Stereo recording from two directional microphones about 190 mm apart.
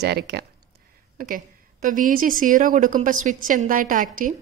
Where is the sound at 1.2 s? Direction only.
45° right (ahead or behind).